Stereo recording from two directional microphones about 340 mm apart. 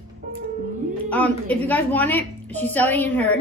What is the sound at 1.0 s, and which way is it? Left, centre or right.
A woman's voice, centre.